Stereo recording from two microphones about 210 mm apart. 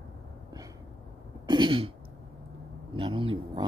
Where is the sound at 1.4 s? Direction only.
20° right (ahead or behind).